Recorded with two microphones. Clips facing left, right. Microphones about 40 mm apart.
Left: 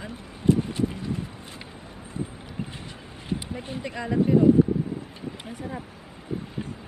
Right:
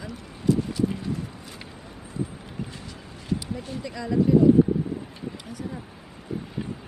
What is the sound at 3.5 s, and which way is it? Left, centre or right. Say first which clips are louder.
Speech: even; left.